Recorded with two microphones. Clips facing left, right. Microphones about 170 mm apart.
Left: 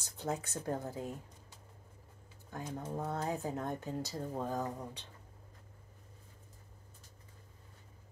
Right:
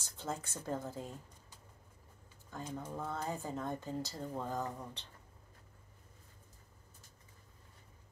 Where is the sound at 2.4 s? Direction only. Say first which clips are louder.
Left 2 dB; 15° left (ahead or behind).